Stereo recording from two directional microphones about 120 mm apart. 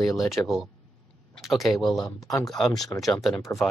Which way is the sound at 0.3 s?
5° right (ahead or behind).